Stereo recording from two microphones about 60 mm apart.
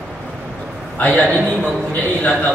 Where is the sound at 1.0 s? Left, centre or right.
Left.